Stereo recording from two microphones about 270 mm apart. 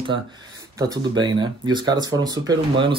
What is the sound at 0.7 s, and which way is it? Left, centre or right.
Speech, centre.